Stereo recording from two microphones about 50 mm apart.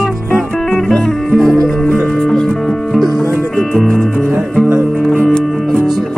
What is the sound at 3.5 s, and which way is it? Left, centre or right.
Music, centre.